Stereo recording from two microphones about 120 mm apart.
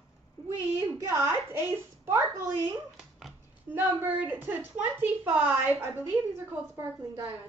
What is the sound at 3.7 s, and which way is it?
A woman's voice, 15° right (ahead or behind).